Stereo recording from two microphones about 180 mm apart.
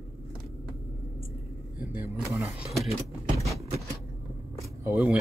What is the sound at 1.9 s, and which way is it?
Speech, 10° right (ahead or behind).